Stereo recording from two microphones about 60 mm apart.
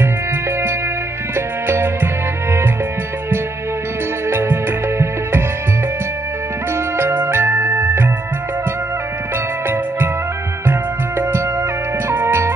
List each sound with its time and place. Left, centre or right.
1.3 s music: right
4.3 s music: right
6.7 s music: right
10.7 s music: right